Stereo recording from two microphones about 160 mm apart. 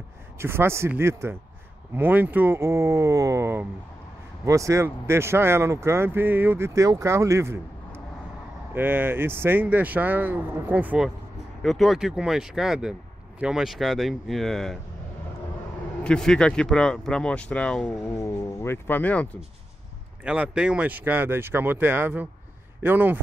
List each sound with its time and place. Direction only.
0.4 s speech: 15° right (ahead or behind)
11.6 s speech: centre (ahead or behind)
16.0 s speech: 5° left (ahead or behind)
18.0 s speech: 20° left (ahead or behind)
20.2 s speech: 5° right (ahead or behind)